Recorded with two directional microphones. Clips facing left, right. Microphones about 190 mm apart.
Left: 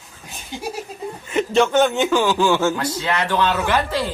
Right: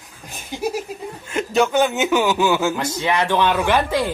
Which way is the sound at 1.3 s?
Centre (ahead or behind).